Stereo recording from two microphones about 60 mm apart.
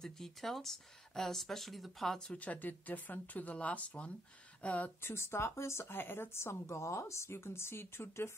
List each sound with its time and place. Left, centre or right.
0.0 s speech: centre
2.3 s speech: left
5.0 s speech: left